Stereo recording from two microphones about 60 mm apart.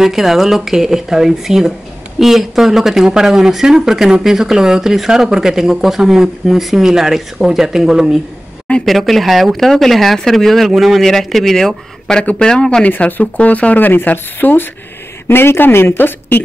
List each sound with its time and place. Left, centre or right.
0.0 s speech: centre
8.8 s speech: centre; by 13.7 s left
13.7 s speech: left